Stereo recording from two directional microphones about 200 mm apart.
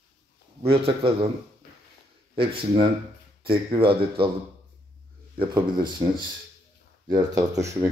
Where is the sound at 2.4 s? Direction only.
25° right (ahead or behind).